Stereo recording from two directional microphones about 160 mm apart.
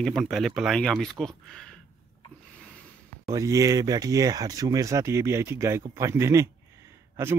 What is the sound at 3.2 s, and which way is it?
A man's voice, 20° right (ahead or behind).